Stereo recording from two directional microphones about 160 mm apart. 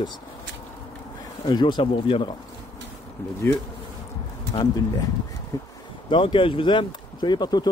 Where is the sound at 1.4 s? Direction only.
30° left (ahead or behind).